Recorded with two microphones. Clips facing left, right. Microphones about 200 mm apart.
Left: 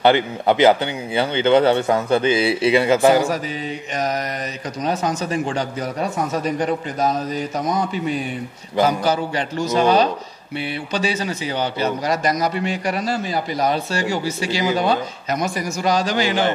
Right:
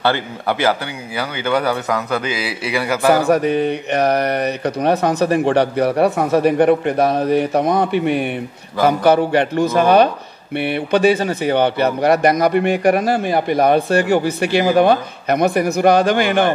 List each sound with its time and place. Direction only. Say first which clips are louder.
0.0 s speech: left 3 dB; 20° left (ahead or behind)
3.3 s a man's voice: right 9 dB; 65° right (ahead or behind)